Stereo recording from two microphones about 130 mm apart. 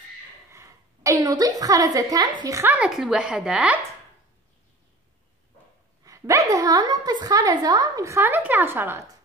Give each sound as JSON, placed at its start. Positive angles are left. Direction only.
{"t": 0.5, "sound": "a sound", "side_deg": -25}
{"t": 2.4, "sound": "a woman's voice", "side_deg": -25}
{"t": 2.7, "sound": "a woman's voice", "side_deg": -5}
{"t": 6.0, "sound": "a woman's voice", "side_deg": -25}